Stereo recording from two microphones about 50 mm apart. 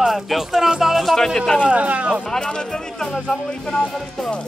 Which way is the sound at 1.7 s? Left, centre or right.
Right.